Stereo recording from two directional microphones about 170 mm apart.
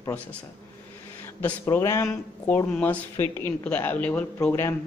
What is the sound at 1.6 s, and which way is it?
Speech, 15° left (ahead or behind).